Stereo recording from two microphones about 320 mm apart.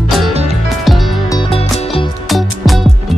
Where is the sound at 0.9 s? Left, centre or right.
Centre.